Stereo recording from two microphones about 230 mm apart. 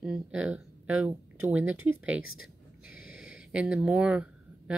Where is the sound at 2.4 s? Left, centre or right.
Centre.